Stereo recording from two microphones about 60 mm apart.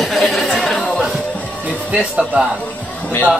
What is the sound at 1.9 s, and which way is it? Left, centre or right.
Speech, centre.